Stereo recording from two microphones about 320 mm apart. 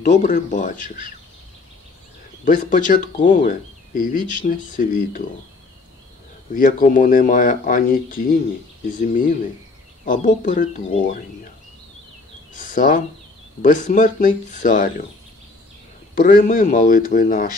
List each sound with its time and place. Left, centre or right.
0.0 s speech: left
2.4 s speech: left
6.5 s speech: left
12.5 s speech: left
16.2 s speech: left